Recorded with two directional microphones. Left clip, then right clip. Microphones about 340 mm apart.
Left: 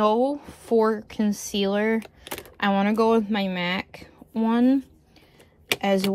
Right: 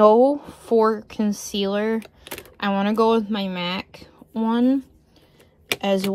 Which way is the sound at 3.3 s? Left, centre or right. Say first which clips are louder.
Even; centre.